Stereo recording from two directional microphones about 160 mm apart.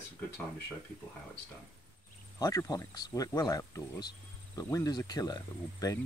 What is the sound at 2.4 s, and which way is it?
Speech, 20° left (ahead or behind).